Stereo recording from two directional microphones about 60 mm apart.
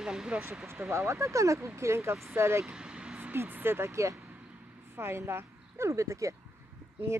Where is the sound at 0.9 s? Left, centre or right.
Right.